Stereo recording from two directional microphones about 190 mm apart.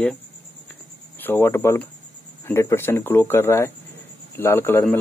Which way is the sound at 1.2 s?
10° left (ahead or behind).